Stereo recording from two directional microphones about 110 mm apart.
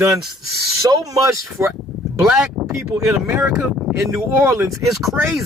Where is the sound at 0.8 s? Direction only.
30° right (ahead or behind).